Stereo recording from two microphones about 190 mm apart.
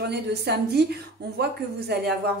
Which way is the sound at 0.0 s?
60° right (ahead or behind).